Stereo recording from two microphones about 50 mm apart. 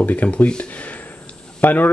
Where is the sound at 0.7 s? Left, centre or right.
Left.